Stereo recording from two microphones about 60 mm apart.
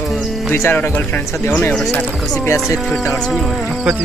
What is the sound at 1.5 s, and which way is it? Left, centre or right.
Speech, left.